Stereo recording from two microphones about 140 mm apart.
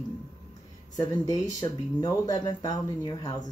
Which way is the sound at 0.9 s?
30° left (ahead or behind).